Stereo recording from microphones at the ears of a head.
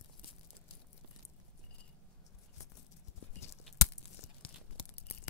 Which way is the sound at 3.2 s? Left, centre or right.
Left.